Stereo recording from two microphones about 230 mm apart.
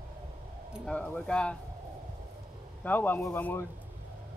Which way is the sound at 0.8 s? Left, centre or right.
Centre.